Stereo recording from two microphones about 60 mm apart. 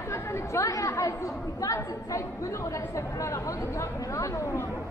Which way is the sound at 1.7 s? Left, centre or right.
Left.